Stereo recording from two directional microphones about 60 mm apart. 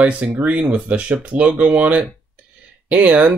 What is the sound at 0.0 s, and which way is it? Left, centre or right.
Speech, right.